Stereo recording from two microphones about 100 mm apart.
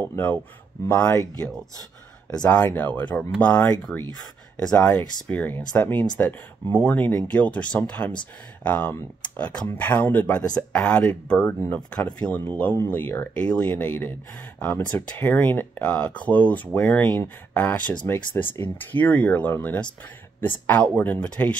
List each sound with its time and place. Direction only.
0.1 s speech: 20° left (ahead or behind)
2.3 s speech: 10° left (ahead or behind)